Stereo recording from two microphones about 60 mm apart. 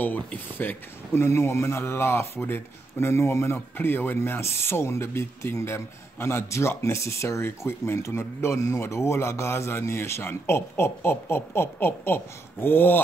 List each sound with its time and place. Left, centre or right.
0.0 s speech: left
1.1 s speech: left
3.7 s speech: left